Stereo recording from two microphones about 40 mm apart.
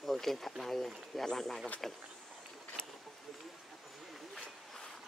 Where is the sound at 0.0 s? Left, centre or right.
Centre.